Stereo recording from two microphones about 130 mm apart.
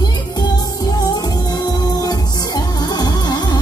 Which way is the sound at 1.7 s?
30° left (ahead or behind).